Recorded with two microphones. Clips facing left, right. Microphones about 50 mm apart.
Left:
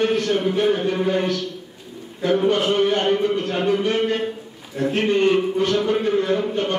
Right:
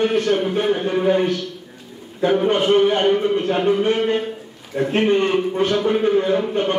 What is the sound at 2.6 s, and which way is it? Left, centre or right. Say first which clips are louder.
A man's voice: right 3 dB; right.